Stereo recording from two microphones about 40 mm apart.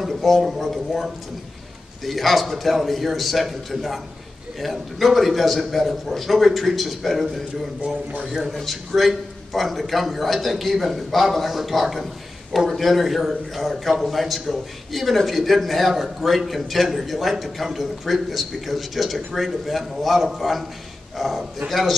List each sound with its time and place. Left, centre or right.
0.0 s a sound: centre
0.4 s a man's voice: centre
8.3 s a man's voice: centre